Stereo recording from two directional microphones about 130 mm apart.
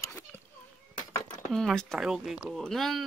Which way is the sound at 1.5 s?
5° left (ahead or behind).